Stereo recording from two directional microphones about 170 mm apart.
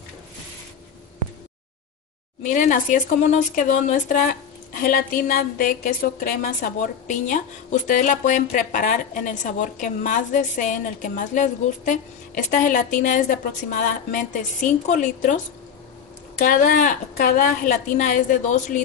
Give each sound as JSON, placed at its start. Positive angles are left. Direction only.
{"t": 2.4, "sound": "a woman's voice", "side_deg": 50}
{"t": 16.3, "sound": "a woman's voice", "side_deg": 55}